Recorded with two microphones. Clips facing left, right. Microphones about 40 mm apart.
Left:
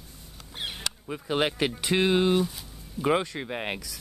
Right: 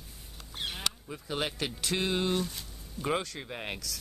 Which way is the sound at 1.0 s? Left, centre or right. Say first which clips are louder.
Left 12 dB; left.